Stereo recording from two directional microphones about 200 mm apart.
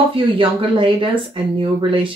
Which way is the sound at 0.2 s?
25° right (ahead or behind).